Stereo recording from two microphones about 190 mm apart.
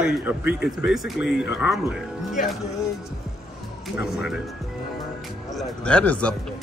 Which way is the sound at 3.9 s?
5° right (ahead or behind).